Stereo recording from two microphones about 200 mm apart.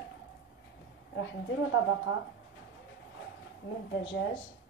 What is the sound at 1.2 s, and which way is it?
Speech, 70° left (ahead or behind).